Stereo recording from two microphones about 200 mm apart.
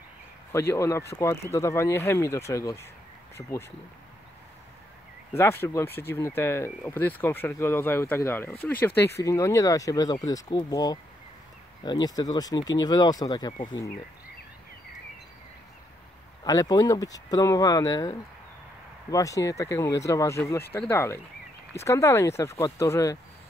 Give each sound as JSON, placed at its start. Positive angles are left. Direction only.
{"t": 0.5, "sound": "speech", "side_deg": 15}
{"t": 5.3, "sound": "speech", "side_deg": 10}
{"t": 16.4, "sound": "speech", "side_deg": 20}